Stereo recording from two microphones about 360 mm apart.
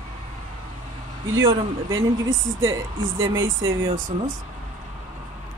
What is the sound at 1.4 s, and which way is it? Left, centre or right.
Speech, centre.